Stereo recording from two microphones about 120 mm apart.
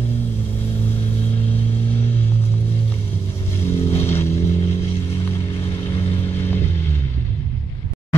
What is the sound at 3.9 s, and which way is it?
Vehicle, 20° left (ahead or behind).